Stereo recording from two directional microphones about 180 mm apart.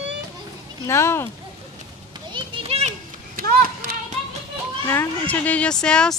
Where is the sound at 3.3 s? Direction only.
50° right (ahead or behind).